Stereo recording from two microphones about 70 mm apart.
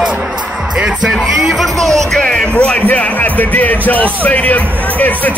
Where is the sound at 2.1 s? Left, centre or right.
Centre.